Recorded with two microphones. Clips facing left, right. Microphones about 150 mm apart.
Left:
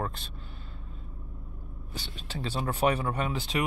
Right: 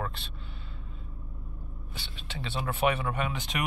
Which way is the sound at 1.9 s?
40° left (ahead or behind).